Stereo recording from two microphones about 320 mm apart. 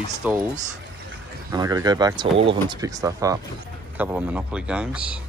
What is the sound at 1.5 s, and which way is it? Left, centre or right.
Speech, centre.